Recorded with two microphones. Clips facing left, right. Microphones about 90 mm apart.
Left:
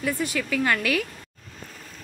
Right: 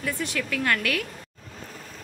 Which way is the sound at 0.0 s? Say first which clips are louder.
Left 3 dB; 5° left (ahead or behind).